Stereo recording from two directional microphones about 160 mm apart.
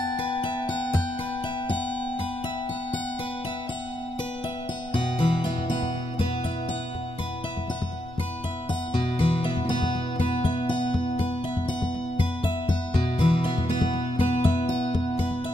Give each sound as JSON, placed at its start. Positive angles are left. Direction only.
{"t": 0.4, "sound": "music", "side_deg": 30}
{"t": 4.9, "sound": "music", "side_deg": 30}
{"t": 9.2, "sound": "music", "side_deg": 30}